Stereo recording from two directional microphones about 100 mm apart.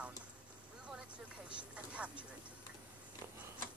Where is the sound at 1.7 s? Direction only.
10° right (ahead or behind).